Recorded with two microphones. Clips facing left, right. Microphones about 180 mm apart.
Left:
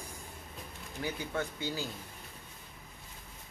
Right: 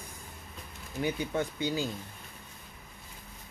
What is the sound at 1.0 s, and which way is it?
Speech, 20° right (ahead or behind).